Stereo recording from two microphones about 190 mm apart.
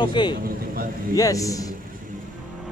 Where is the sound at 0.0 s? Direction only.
25° left (ahead or behind).